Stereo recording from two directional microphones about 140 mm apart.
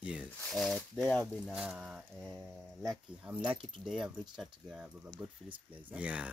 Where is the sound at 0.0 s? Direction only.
5° right (ahead or behind).